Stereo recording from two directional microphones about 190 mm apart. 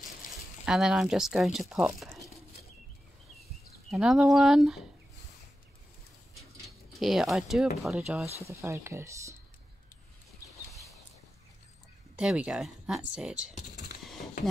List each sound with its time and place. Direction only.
0.7 s speech: 5° right (ahead or behind)
3.9 s speech: centre (ahead or behind)
7.0 s speech: centre (ahead or behind)
8.5 s speech: 15° right (ahead or behind)
12.2 s speech: 5° right (ahead or behind)
13.6 s computer keyboard: 40° left (ahead or behind)